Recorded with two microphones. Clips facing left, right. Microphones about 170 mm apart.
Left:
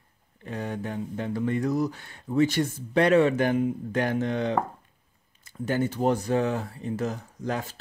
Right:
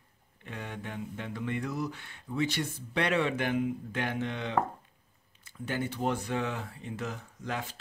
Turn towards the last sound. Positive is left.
turn(degrees=40)  # may be behind; listen again after turning